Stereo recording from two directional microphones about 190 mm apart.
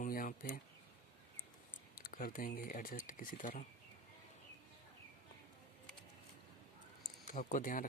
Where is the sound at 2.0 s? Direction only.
50° left (ahead or behind).